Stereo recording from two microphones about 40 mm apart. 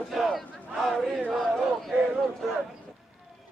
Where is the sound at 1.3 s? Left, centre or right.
Centre.